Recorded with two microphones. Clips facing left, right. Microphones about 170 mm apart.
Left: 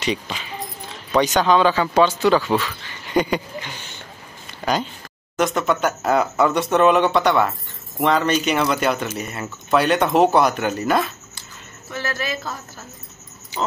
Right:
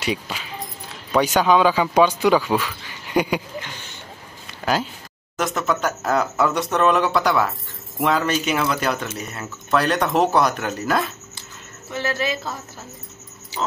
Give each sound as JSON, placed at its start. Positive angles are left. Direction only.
{"t": 0.0, "sound": "speech", "side_deg": -5}
{"t": 5.4, "sound": "speech", "side_deg": 0}
{"t": 11.9, "sound": "speech", "side_deg": -25}